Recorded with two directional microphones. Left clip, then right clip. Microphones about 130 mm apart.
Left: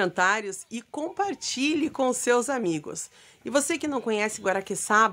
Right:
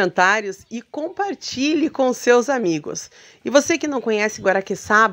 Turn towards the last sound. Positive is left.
turn(degrees=-30)  # may be behind; listen again after turning